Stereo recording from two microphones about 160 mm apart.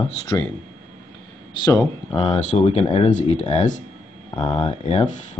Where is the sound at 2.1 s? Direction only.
40° left (ahead or behind).